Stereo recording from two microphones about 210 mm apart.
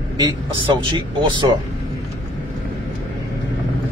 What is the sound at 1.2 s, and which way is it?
Speech, 20° right (ahead or behind).